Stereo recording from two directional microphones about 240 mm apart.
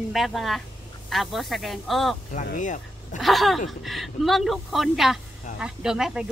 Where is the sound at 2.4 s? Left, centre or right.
Left.